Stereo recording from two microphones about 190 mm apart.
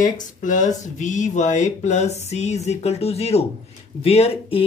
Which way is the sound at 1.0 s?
40° left (ahead or behind).